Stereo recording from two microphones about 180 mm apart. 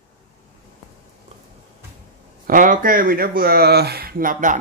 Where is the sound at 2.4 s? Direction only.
50° right (ahead or behind).